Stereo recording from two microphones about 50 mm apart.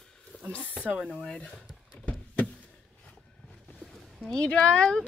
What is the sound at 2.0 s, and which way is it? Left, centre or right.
Power windows, left.